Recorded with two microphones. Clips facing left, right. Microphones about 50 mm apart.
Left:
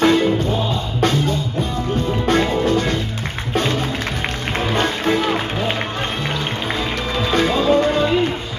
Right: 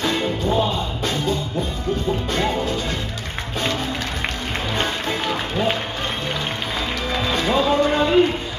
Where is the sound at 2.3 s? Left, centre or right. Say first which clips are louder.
Left 8 dB; left.